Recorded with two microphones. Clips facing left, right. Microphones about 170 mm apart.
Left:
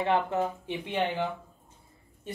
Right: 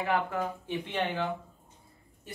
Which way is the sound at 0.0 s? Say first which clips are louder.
Left 3 dB; 25° left (ahead or behind).